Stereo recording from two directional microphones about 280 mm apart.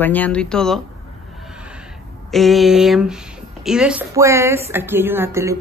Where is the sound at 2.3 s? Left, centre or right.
Centre.